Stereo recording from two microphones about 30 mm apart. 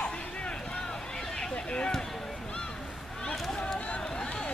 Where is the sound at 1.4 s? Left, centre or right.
Left.